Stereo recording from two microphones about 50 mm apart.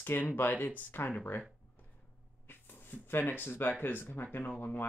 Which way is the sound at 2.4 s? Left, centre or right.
Left.